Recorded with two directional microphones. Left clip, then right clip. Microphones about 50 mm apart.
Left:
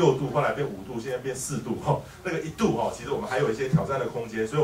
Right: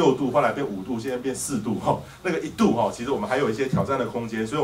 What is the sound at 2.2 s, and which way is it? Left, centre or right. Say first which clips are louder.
Speech: right 5 dB; right.